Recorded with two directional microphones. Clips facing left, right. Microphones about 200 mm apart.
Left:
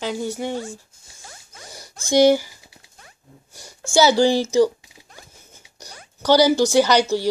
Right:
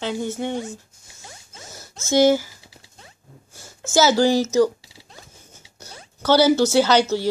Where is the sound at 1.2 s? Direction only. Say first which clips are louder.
Even; 25° right (ahead or behind).